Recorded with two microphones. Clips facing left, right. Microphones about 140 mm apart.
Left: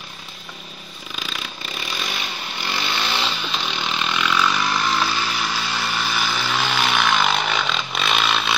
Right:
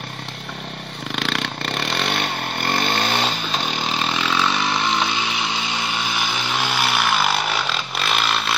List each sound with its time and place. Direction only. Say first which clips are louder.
1.1 s vehicle: right 8 dB; 70° right (ahead or behind); by 5.6 s 20° right (ahead or behind)
6.5 s chainsaw: even; 10° right (ahead or behind)